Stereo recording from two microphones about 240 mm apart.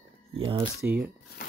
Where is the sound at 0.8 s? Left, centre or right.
Centre.